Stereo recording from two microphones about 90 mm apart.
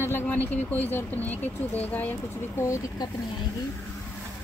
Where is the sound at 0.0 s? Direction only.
25° left (ahead or behind).